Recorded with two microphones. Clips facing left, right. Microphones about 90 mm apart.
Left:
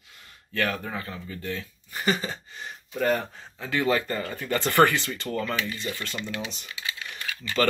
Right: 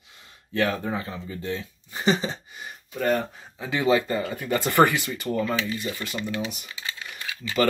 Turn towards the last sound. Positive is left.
turn(degrees=-15)  # may be behind; listen again after turning